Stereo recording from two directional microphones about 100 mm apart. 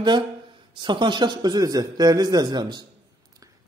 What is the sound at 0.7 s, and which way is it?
A man's voice, 50° right (ahead or behind).